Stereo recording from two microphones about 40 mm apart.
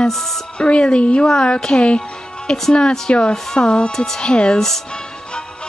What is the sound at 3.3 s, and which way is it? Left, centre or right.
Speech, centre.